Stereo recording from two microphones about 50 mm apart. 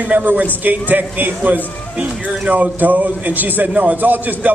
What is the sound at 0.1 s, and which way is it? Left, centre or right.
A man's voice, right.